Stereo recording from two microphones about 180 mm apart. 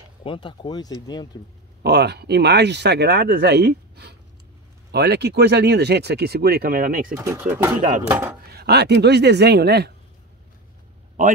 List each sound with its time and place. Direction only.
0.2 s speech: 25° left (ahead or behind)
1.8 s speech: 65° right (ahead or behind); by 7.2 s 50° right (ahead or behind)
7.2 s speech: 10° right (ahead or behind)
8.5 s speech: 65° right (ahead or behind)